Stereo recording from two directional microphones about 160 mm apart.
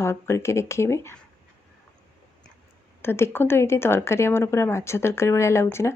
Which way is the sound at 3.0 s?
15° left (ahead or behind).